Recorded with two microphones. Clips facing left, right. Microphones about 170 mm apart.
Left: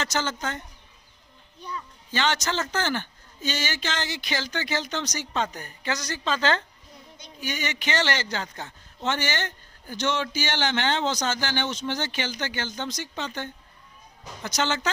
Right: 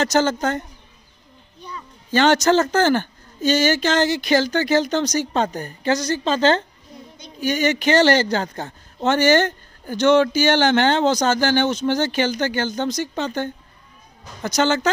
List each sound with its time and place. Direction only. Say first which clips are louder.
0.0 s speech: right 10 dB; 40° right (ahead or behind)
2.0 s a man's voice: right 11 dB; 45° right (ahead or behind)